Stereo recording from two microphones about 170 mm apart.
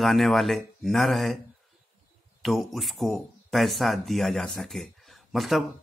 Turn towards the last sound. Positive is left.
turn(degrees=0)  # may be behind; listen again after turning